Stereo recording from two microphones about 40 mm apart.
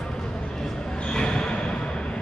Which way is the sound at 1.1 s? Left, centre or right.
Left.